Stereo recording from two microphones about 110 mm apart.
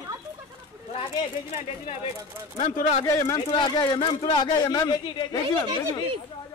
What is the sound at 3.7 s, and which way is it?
Speech, 45° left (ahead or behind).